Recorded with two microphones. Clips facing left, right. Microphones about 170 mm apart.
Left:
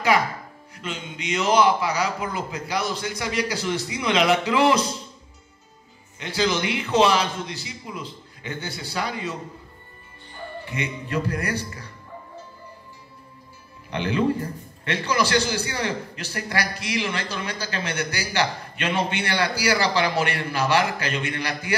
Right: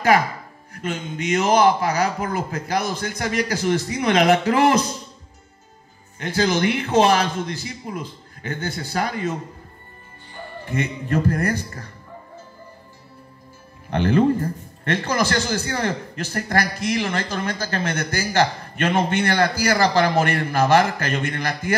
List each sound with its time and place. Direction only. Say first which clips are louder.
0.7 s a man's voice: right 6 dB; 50° right (ahead or behind)
6.1 s a man's voice: right 3 dB; 50° right (ahead or behind)
10.6 s a man's voice: right 6 dB; 45° right (ahead or behind)
13.8 s a man's voice: right 5 dB; 45° right (ahead or behind)